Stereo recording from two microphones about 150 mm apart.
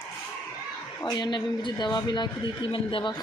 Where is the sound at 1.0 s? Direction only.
30° left (ahead or behind).